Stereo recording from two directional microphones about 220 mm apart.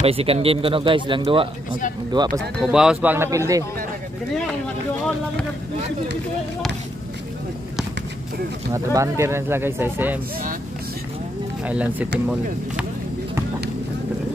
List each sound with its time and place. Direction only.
0.0 s speech: 25° right (ahead or behind)
2.6 s speech: 5° right (ahead or behind)
8.7 s speech: 15° right (ahead or behind)
11.6 s speech: 5° right (ahead or behind)